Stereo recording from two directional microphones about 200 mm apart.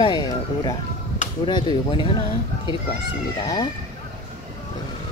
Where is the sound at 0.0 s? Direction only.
20° left (ahead or behind).